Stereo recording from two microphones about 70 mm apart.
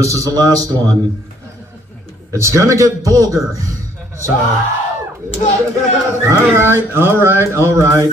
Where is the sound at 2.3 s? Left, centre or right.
Right.